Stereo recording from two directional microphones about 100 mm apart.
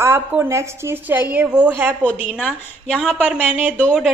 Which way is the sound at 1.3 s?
10° right (ahead or behind).